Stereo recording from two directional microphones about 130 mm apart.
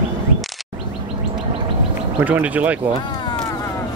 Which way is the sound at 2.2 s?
10° right (ahead or behind).